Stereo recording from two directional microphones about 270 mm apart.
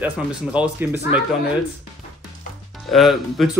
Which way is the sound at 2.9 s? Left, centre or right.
Centre.